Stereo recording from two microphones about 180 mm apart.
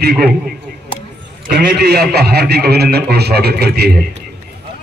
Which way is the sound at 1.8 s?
60° right (ahead or behind).